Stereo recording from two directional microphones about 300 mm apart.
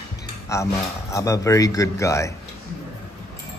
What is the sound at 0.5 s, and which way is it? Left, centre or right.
Speech, centre.